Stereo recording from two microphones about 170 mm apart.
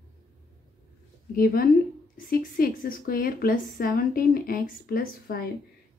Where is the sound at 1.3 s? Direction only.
60° left (ahead or behind).